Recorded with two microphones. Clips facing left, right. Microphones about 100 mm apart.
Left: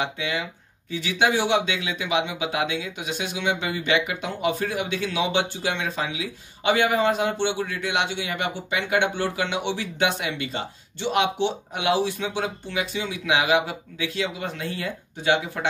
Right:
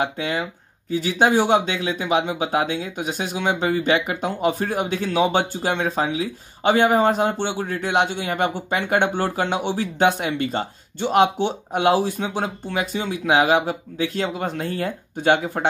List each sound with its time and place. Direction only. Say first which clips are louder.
0.0 s speech: right 4 dB; 45° right (ahead or behind)